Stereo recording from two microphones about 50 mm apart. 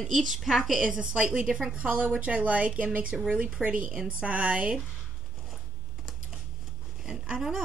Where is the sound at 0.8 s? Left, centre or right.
Centre.